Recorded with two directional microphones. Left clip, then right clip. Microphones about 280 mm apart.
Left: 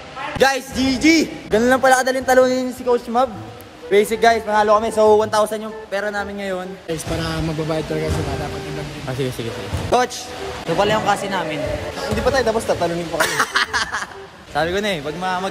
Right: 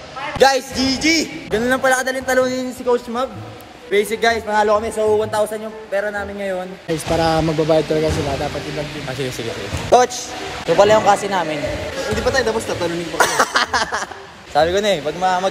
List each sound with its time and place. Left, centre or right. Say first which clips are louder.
0.4 s a man's voice: right 3 dB; centre
9.8 s a man's voice: right 5 dB; centre
12.2 s speech: left 1 dB; centre
13.2 s a man's voice: right 3 dB; centre